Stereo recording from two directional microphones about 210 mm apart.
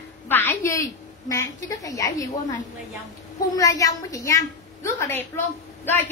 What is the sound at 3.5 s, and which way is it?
A woman's voice, 15° left (ahead or behind).